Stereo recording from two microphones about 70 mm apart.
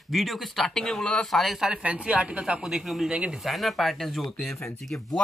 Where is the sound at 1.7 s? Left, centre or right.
Centre.